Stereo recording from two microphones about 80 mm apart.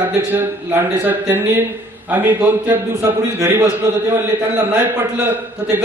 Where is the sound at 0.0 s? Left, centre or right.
Right.